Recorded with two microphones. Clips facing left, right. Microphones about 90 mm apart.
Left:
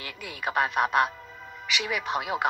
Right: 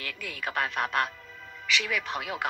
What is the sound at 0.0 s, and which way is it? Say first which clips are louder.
A man's voice: left 2 dB; 20° left (ahead or behind).